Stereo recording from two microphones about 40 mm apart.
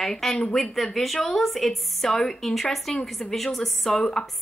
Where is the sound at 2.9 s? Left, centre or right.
Centre.